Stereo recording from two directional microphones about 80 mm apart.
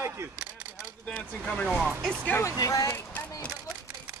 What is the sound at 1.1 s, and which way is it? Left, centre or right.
Speech, centre.